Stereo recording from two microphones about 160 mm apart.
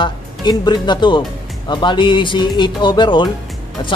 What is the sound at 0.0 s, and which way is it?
Speech, 30° left (ahead or behind).